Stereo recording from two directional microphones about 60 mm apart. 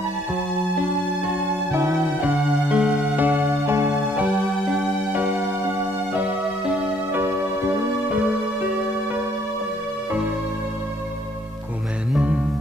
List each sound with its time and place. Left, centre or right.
1.7 s music: right
2.1 s music: right
2.9 s music: centre
3.2 s music: right
3.9 s music: centre
7.2 s music: right
8.1 s music: centre